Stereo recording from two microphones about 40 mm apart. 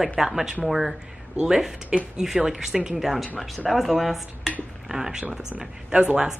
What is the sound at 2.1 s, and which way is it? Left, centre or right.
Speech, centre.